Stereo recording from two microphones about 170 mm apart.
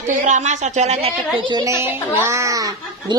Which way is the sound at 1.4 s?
25° right (ahead or behind).